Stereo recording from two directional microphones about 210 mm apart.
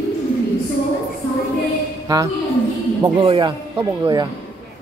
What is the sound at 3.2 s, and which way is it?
Speech, 25° right (ahead or behind).